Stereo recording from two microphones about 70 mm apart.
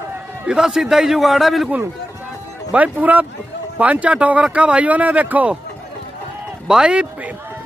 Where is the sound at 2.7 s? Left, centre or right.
Right.